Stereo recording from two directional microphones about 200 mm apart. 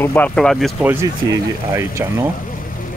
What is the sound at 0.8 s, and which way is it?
Speech, 15° right (ahead or behind).